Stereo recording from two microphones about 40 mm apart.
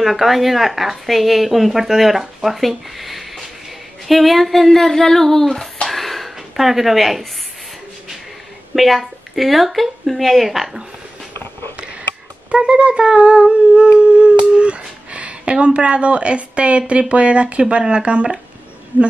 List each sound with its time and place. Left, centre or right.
0.0 s speech: centre
5.9 s a sound: centre
8.7 s speech: centre
12.4 s speech: right